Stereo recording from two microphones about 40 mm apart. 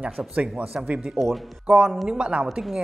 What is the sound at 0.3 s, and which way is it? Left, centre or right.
Speech, right.